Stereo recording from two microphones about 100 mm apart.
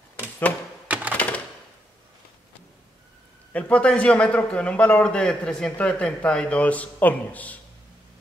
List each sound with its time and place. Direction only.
0.1 s typewriter: 15° left (ahead or behind)
0.8 s typewriter: 15° right (ahead or behind)
1.1 s typewriter: 15° left (ahead or behind)
3.5 s a man's voice: 15° left (ahead or behind)